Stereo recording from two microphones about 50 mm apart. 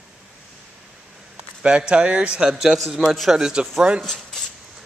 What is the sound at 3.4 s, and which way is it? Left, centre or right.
Speech, centre.